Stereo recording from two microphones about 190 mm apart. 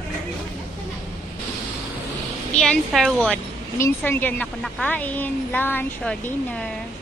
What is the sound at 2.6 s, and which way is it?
A woman's voice, centre (ahead or behind).